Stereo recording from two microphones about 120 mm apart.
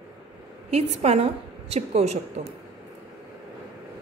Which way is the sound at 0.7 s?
60° right (ahead or behind).